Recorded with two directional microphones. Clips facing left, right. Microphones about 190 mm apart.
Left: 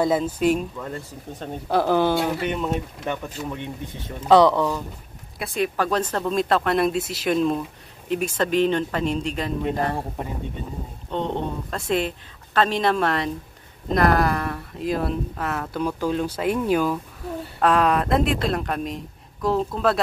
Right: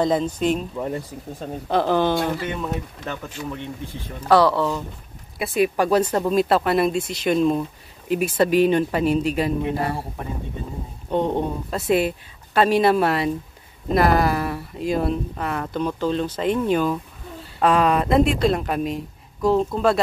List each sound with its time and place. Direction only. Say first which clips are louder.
0.0 s speech: even; 5° left (ahead or behind)
0.7 s speech: right 6 dB; 20° right (ahead or behind)
1.7 s speech: even; 10° left (ahead or behind)
3.4 s speech: even; 15° left (ahead or behind)
5.4 s speech: right 4 dB; 5° right (ahead or behind)
11.1 s speech: right 4 dB; 10° right (ahead or behind)